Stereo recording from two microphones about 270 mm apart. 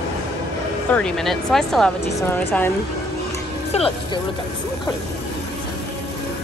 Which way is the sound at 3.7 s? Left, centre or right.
Left.